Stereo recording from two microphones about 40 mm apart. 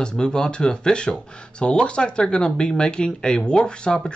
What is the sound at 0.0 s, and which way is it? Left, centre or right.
Speech, left.